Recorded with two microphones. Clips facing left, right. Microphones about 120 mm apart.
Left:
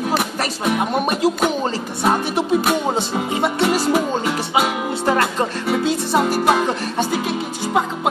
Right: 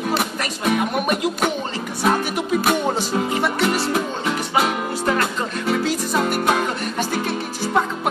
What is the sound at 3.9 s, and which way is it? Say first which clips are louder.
Music: left 3 dB; 5° left (ahead or behind).